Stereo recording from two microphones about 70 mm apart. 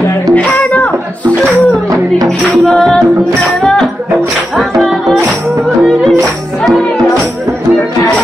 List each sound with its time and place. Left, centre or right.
0.3 s music: left
2.7 s music: centre
4.6 s music: centre